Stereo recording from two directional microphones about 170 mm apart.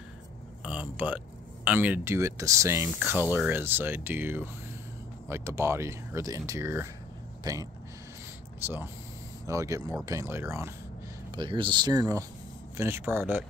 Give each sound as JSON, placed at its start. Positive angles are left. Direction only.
{"t": 0.7, "sound": "speech", "side_deg": -10}
{"t": 8.6, "sound": "speech", "side_deg": -15}
{"t": 11.3, "sound": "speech", "side_deg": -30}